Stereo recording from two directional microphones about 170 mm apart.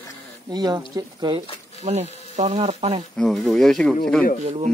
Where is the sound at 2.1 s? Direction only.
40° left (ahead or behind).